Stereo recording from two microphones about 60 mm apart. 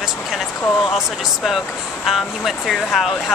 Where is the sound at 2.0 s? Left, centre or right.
Centre.